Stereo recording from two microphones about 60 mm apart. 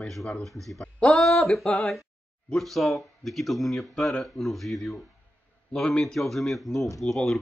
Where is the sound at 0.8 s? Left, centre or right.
Centre.